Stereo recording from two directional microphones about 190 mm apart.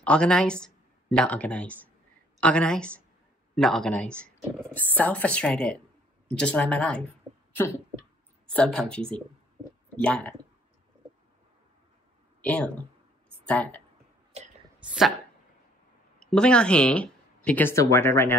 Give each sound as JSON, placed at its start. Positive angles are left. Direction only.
{"t": 0.0, "sound": "a woman's voice", "side_deg": 5}
{"t": 8.5, "sound": "speech", "side_deg": 5}
{"t": 10.0, "sound": "speech", "side_deg": 5}
{"t": 12.4, "sound": "speech", "side_deg": 5}
{"t": 14.8, "sound": "speech", "side_deg": -5}
{"t": 16.2, "sound": "speech", "side_deg": 5}